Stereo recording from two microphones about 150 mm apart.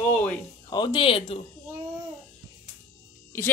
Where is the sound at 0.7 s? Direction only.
30° left (ahead or behind).